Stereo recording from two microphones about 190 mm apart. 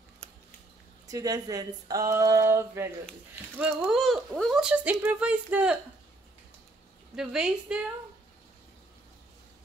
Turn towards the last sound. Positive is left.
turn(degrees=-5)  # may be behind; listen again after turning